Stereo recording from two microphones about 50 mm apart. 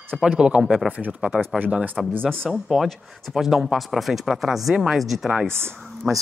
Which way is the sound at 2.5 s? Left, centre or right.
Centre.